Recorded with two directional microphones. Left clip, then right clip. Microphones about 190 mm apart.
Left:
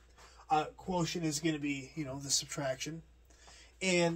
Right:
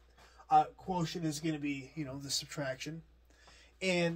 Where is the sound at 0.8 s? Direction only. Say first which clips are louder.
Left 1 dB; 25° right (ahead or behind).